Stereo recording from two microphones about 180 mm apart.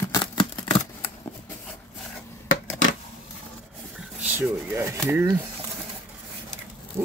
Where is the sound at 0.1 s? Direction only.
25° left (ahead or behind).